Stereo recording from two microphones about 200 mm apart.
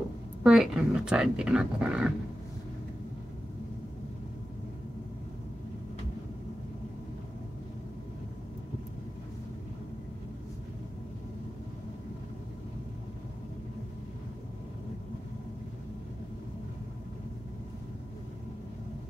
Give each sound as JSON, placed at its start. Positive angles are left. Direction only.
{"t": 0.4, "sound": "speech", "side_deg": -5}